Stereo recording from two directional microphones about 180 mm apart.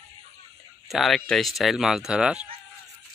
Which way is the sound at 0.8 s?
Centre (ahead or behind).